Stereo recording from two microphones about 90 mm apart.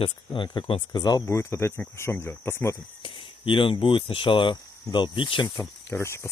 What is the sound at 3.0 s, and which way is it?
Speech, 80° left.